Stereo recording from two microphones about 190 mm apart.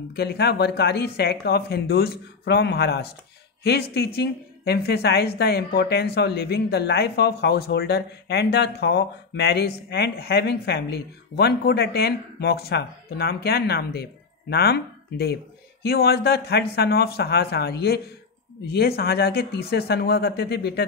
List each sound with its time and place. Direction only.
0.1 s speech: 60° left (ahead or behind)